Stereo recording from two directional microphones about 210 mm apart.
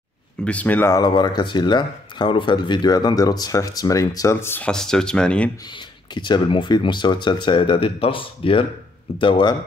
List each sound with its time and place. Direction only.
0.5 s speech: 5° left (ahead or behind)
6.1 s speech: 20° left (ahead or behind)